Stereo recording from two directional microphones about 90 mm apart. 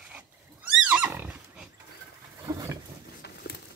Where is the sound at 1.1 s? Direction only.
15° right (ahead or behind).